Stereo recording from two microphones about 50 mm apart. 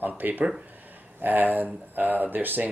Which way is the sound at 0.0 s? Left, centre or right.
Right.